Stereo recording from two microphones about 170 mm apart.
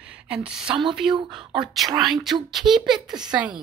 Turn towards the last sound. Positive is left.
turn(degrees=-5)  # may be behind; listen again after turning